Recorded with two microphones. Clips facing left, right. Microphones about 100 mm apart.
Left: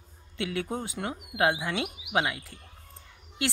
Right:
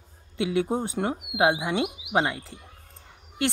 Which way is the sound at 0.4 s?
20° right (ahead or behind).